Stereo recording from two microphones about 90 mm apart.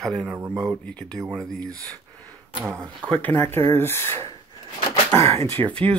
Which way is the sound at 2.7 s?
25° right (ahead or behind).